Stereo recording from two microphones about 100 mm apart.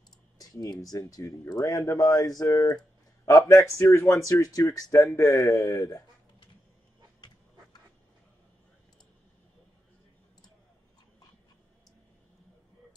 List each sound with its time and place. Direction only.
0.4 s speech: 40° left (ahead or behind)
7.2 s duck: 45° left (ahead or behind)